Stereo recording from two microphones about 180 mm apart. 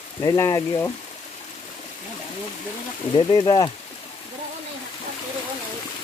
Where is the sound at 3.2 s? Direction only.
25° left (ahead or behind).